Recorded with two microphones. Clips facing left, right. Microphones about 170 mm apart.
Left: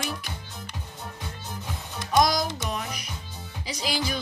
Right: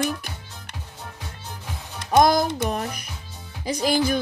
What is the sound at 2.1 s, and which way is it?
Speech, 55° right (ahead or behind).